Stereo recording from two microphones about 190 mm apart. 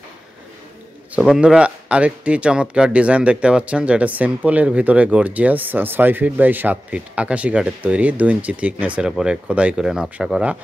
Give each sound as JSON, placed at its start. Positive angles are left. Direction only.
{"t": 1.1, "sound": "speech", "side_deg": -5}